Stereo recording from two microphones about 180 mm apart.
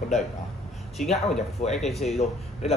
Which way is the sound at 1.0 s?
45° left (ahead or behind).